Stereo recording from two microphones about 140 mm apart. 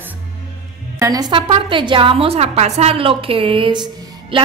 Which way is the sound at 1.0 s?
25° right (ahead or behind).